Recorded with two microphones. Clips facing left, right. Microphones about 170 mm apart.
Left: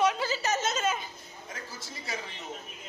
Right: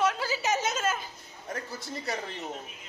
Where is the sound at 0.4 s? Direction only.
15° right (ahead or behind).